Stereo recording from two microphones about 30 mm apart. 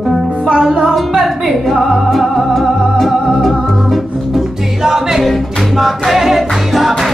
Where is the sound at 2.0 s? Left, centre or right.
Centre.